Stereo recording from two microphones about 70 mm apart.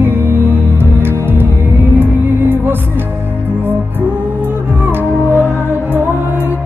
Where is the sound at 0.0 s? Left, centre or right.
Right.